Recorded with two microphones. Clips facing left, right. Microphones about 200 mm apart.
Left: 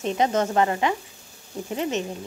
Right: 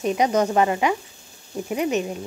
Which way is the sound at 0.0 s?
15° right (ahead or behind).